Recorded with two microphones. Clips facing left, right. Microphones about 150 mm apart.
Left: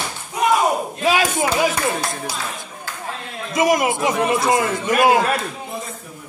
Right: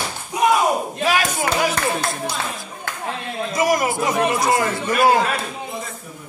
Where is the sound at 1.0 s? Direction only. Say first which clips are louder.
Left 3 dB; 20° left (ahead or behind).